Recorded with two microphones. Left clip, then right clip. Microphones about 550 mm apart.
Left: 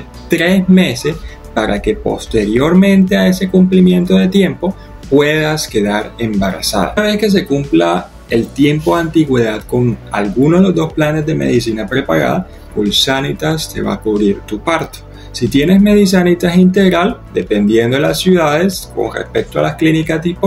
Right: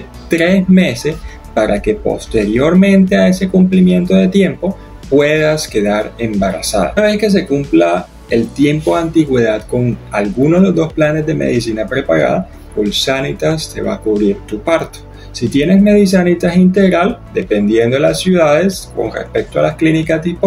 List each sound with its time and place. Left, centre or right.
0.3 s speech: left